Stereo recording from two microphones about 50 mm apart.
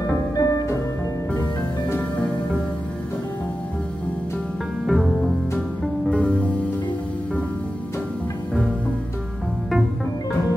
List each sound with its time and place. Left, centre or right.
0.4 s music: left
4.8 s music: centre
6.0 s music: left